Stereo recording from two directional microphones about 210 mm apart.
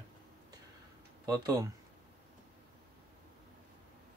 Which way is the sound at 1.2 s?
15° right (ahead or behind).